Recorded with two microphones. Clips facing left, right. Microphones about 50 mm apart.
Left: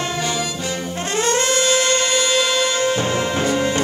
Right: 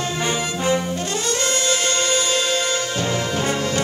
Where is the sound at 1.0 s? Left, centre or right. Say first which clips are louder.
Left 4 dB; left.